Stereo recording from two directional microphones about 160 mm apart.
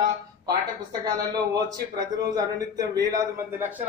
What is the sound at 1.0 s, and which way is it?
Speech, 25° right (ahead or behind).